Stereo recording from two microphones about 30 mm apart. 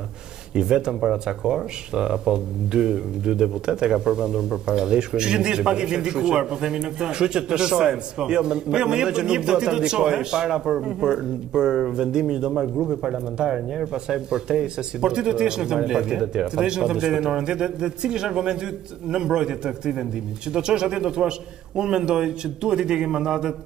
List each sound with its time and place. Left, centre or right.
0.6 s speech: right